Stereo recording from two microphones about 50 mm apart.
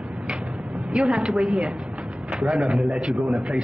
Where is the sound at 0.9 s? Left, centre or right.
Centre.